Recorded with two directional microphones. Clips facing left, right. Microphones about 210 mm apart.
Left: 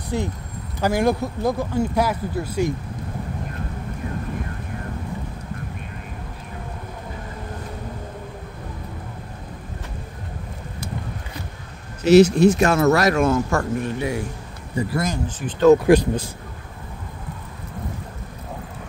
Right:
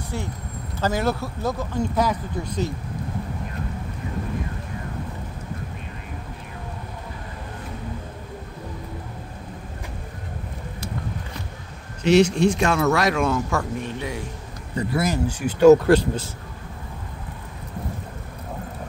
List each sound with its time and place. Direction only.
0.1 s speech: 15° left (ahead or behind)
12.0 s speech: 5° left (ahead or behind)
15.8 s speech: 15° left (ahead or behind)